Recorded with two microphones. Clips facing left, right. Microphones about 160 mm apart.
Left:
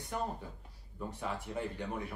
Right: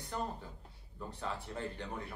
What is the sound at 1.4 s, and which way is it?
Speech, 15° left (ahead or behind).